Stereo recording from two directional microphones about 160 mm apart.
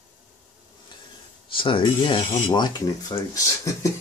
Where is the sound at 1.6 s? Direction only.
35° left (ahead or behind).